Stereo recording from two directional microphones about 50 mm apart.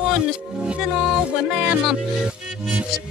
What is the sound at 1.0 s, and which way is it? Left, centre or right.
Music, centre.